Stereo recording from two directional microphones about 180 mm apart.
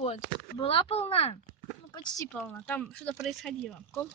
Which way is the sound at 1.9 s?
25° left (ahead or behind).